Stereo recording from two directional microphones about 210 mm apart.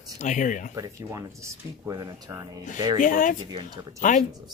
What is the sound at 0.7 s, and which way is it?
Speech, 15° right (ahead or behind).